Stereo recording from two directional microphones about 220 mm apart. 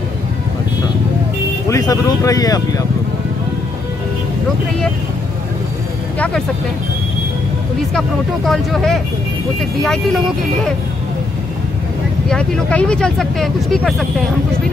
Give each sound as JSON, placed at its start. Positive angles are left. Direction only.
{"t": 1.7, "sound": "speech", "side_deg": 15}
{"t": 6.1, "sound": "vehicle", "side_deg": 5}
{"t": 8.5, "sound": "speech", "side_deg": 0}
{"t": 12.3, "sound": "speech", "side_deg": 5}